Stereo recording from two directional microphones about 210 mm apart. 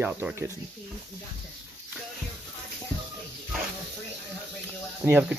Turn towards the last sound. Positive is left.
turn(degrees=-5)  # may be behind; listen again after turning